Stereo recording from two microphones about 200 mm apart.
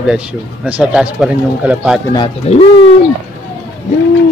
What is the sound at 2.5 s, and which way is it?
Speech, 30° left (ahead or behind).